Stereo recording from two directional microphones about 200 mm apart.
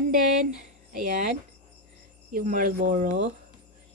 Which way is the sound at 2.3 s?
45° right (ahead or behind).